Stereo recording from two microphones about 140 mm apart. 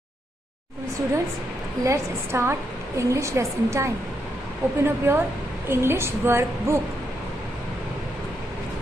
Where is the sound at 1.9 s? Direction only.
20° right (ahead or behind).